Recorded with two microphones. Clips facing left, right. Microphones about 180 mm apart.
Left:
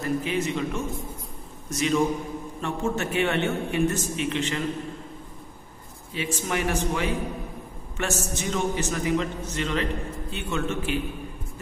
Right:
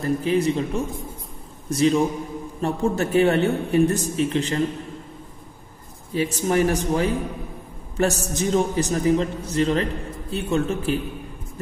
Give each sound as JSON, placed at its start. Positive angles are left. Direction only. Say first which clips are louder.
{"t": 0.0, "sound": "a man's voice", "louder": "right 5 dB", "side_deg": -35}
{"t": 6.1, "sound": "a man's voice", "louder": "right 7 dB", "side_deg": -35}